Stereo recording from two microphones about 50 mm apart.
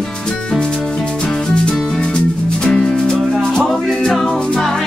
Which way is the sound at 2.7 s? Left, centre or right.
Centre.